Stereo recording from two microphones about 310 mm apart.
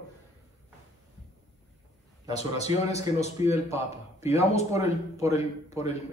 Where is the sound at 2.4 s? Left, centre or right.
Left.